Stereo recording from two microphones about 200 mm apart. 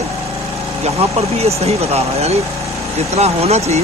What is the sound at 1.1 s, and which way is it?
Speech, 30° right (ahead or behind).